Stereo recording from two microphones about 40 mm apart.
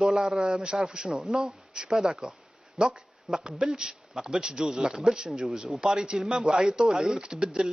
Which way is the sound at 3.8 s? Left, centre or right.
Centre.